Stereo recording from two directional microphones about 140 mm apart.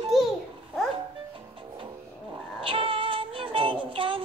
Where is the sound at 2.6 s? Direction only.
40° right (ahead or behind).